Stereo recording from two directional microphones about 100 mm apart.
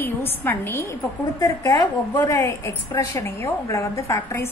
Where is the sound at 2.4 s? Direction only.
25° left (ahead or behind).